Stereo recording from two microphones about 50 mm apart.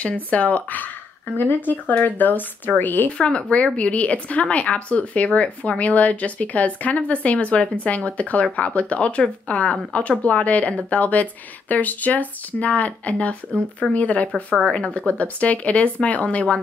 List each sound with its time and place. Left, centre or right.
0.0 s speech: left
3.1 s speech: left